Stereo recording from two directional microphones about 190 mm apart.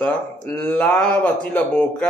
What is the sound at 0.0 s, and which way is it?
Speech, 5° left (ahead or behind).